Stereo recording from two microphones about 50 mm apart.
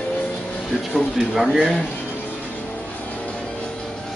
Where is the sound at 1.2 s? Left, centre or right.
Centre.